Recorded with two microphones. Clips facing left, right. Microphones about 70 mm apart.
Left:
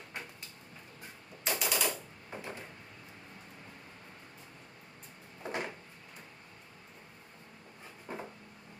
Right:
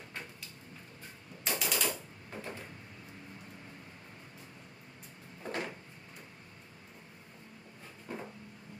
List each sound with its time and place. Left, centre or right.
1.4 s machine gun: centre
5.4 s cupboard open or close: centre
8.1 s a sound: centre